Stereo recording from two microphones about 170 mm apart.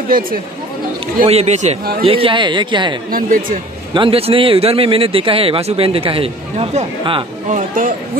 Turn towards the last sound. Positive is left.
turn(degrees=-50)  # may be behind; listen again after turning